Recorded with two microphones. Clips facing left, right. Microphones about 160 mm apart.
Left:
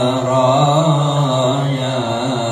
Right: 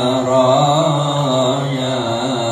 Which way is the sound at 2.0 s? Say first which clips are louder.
Even; 15° left (ahead or behind).